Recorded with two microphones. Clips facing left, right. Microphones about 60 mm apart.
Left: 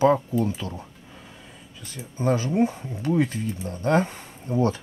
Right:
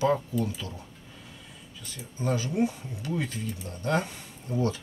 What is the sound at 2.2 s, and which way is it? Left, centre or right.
Speech, left.